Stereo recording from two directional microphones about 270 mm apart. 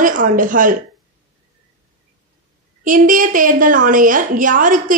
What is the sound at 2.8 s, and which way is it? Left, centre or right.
A woman's voice, right.